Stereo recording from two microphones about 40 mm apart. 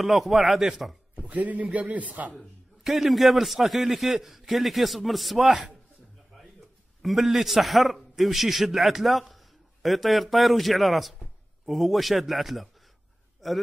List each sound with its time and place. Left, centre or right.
0.0 s a man's voice: centre
1.2 s a man's voice: right
2.8 s a man's voice: centre
7.0 s a man's voice: centre